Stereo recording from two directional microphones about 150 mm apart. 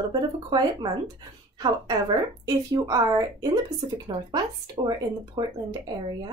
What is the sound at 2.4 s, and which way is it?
Speech, 20° right (ahead or behind).